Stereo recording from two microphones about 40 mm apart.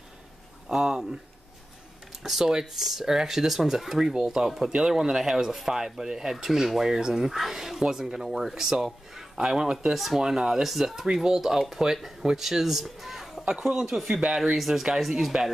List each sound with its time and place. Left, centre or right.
0.7 s speech: centre
2.2 s speech: centre
9.9 s speech: centre
10.2 s speech: centre